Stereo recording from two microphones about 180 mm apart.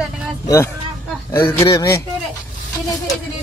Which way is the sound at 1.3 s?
20° left (ahead or behind).